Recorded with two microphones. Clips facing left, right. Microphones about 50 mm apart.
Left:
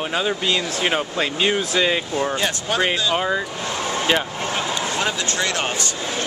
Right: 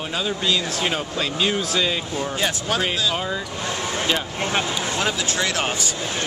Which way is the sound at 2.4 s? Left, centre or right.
Centre.